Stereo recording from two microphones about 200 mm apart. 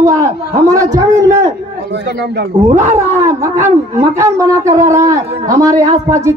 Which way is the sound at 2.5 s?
25° right (ahead or behind).